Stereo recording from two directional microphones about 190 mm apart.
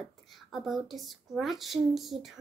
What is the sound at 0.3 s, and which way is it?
A woman's voice, centre (ahead or behind).